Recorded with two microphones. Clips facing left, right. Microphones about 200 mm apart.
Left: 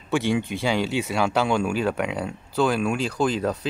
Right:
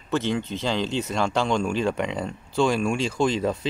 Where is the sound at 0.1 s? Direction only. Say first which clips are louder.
Left 2 dB; 10° left (ahead or behind).